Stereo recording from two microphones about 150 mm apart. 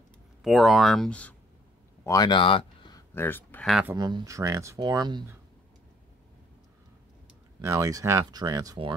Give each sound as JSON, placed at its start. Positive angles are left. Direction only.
{"t": 0.4, "sound": "speech", "side_deg": 0}
{"t": 2.0, "sound": "speech", "side_deg": 30}
{"t": 3.2, "sound": "speech", "side_deg": 15}
{"t": 3.9, "sound": "speech", "side_deg": -25}
{"t": 7.6, "sound": "speech", "side_deg": -20}